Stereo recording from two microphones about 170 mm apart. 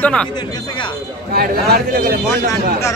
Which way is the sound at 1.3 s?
65° right (ahead or behind).